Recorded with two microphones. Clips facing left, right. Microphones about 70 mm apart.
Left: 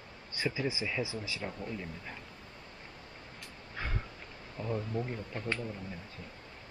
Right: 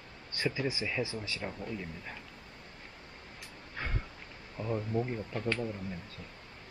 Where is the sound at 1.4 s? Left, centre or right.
Centre.